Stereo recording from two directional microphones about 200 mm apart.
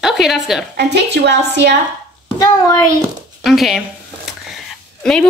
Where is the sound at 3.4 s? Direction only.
Centre (ahead or behind).